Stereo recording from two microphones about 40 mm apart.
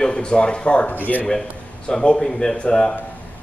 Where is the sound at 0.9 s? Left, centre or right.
Left.